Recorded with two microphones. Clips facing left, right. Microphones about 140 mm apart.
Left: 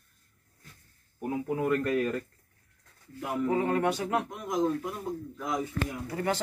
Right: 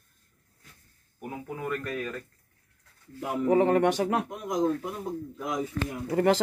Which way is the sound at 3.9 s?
80° right.